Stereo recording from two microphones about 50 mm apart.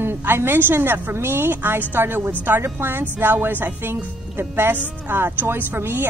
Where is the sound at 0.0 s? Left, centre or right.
Right.